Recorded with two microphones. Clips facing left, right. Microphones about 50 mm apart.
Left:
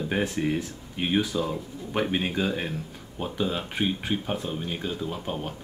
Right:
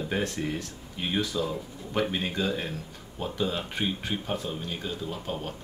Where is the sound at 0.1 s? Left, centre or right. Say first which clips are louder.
Left 4 dB; centre.